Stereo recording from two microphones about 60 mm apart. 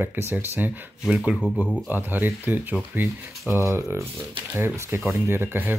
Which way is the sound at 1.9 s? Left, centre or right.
Right.